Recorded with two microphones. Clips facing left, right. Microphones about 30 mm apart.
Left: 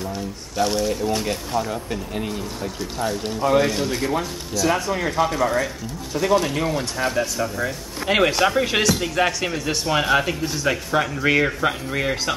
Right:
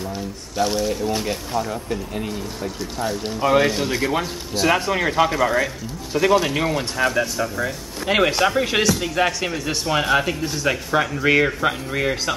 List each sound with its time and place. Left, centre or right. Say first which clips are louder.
0.0 s a man's voice: even; centre
3.3 s speech: right 1 dB; right
3.6 s speech: right 2 dB; centre
4.6 s speech: right 2 dB; right
5.0 s speech: right 1 dB; centre
7.2 s a man's voice: right 1 dB; centre